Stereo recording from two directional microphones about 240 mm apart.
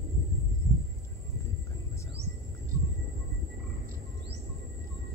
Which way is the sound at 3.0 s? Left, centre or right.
Right.